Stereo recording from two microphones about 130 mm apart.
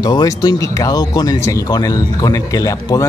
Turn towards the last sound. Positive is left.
turn(degrees=25)  # may be behind; listen again after turning